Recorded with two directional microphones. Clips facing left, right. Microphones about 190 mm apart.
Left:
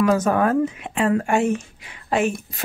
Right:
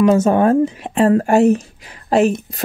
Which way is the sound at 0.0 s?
25° right (ahead or behind).